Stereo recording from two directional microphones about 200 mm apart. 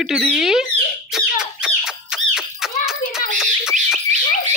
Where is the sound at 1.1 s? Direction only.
Centre (ahead or behind).